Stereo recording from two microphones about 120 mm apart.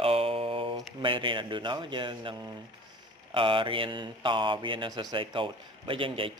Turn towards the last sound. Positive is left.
turn(degrees=-45)  # may be behind; listen again after turning